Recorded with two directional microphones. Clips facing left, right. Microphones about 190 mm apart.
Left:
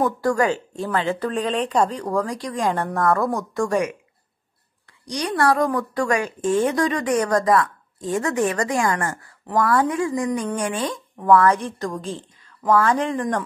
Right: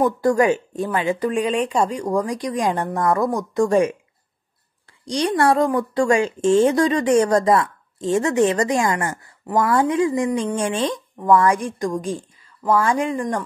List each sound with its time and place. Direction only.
0.2 s speech: 20° right (ahead or behind)
5.0 s speech: 30° right (ahead or behind)
11.1 s speech: 10° right (ahead or behind)